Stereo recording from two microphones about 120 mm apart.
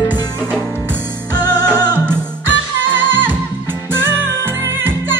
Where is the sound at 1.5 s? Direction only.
15° right (ahead or behind).